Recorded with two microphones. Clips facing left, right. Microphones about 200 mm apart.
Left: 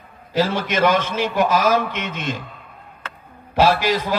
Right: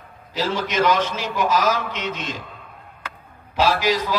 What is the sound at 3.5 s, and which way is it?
Speech, 55° left (ahead or behind).